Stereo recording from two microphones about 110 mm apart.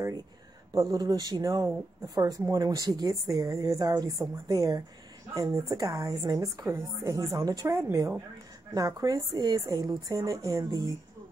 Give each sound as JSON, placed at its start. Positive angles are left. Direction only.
{"t": 0.7, "sound": "a woman's voice", "side_deg": -35}